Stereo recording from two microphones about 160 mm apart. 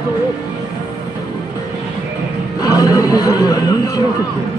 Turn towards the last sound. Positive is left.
turn(degrees=20)  # may be behind; listen again after turning